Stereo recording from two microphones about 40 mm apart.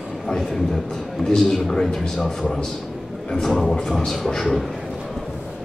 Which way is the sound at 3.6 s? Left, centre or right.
Centre.